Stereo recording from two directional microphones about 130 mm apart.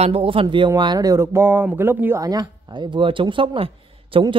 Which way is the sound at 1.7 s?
15° right (ahead or behind).